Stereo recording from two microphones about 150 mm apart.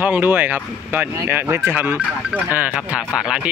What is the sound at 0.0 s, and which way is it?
Speech, 10° right (ahead or behind).